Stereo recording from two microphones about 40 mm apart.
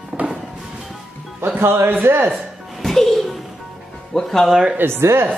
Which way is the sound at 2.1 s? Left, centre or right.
Right.